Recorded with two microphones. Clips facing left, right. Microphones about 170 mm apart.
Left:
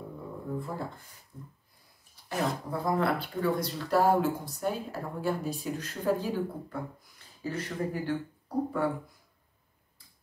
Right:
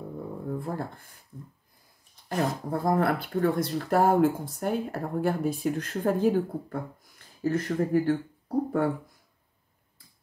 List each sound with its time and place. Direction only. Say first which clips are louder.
0.6 s speech: right 3 dB; 55° right (ahead or behind)
2.2 s speech: right 3 dB; 50° right (ahead or behind)